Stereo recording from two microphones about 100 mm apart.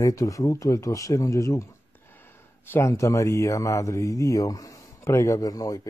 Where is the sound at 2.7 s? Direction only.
30° left (ahead or behind).